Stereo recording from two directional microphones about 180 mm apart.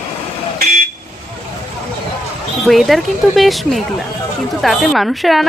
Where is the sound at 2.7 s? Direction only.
Centre (ahead or behind).